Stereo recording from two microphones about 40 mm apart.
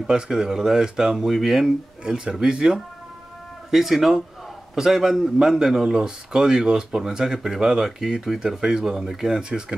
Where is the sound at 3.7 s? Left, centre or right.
Centre.